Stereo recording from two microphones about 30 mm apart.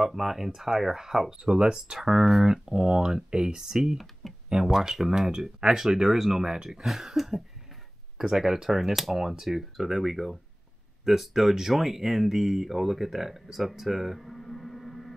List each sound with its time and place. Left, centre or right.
0.0 s speech: centre
8.2 s speech: centre